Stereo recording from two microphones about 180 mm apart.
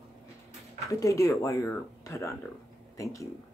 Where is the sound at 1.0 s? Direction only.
20° left (ahead or behind).